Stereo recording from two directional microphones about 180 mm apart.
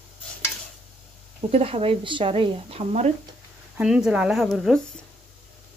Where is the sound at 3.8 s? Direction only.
5° right (ahead or behind).